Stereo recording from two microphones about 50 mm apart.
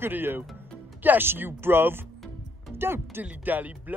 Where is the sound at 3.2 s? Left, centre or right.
Right.